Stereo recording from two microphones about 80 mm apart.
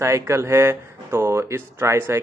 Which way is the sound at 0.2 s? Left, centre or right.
Right.